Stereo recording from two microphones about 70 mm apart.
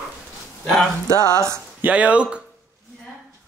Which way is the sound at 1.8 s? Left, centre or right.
Centre.